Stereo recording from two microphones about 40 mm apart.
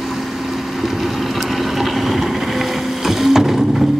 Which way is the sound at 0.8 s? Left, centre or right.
Centre.